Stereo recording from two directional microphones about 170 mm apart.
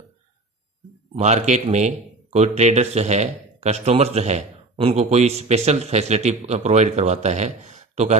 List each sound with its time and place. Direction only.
1.1 s a man's voice: 40° right (ahead or behind)